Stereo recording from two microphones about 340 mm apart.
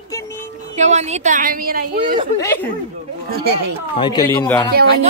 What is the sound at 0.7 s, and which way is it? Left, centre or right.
A woman's voice, centre.